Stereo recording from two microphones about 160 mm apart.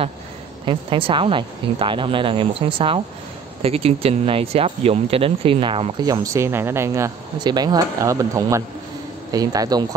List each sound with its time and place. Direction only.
0.7 s speech: 35° right (ahead or behind)
6.0 s speech: 20° right (ahead or behind)